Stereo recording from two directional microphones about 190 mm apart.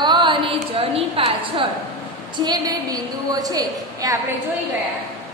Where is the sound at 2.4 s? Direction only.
20° right (ahead or behind).